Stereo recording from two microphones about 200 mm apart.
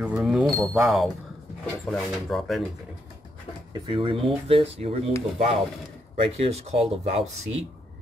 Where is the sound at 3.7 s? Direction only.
25° right (ahead or behind).